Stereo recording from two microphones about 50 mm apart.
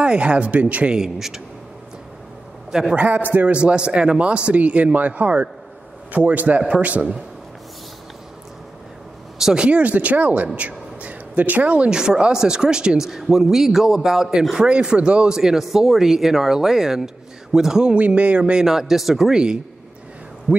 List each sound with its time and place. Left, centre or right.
0.0 s speech: right
0.9 s speech: centre
2.7 s speech: centre
3.0 s a man's voice: right
3.5 s a man's voice: centre
9.4 s speech: centre
9.7 s speech: right
11.0 s a sound: right
11.9 s speech: centre
17.9 s speech: right
18.7 s speech: centre
20.5 s speech: right